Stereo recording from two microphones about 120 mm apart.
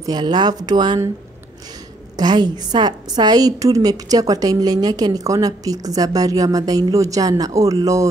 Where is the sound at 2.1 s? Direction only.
35° right (ahead or behind).